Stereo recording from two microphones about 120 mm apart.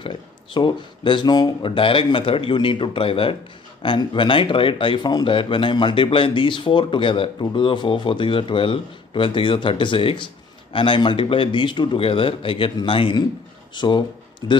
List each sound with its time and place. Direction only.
0.0 s speech: 45° left (ahead or behind)